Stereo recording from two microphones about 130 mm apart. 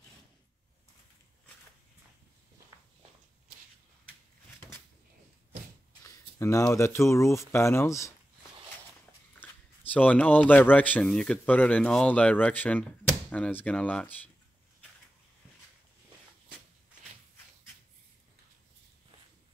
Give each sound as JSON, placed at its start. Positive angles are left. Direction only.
{"t": 2.7, "sound": "a sound", "side_deg": -25}
{"t": 6.0, "sound": "speech", "side_deg": 25}
{"t": 9.4, "sound": "speech", "side_deg": 10}